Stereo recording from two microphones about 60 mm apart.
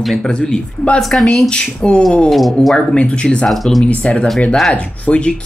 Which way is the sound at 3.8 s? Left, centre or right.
Centre.